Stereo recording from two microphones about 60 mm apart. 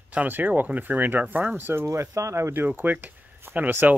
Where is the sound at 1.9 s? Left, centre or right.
Right.